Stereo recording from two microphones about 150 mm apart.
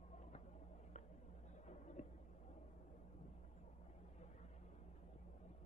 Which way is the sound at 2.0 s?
50° left (ahead or behind).